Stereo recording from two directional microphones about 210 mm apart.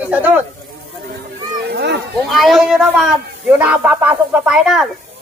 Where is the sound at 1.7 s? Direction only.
50° right (ahead or behind).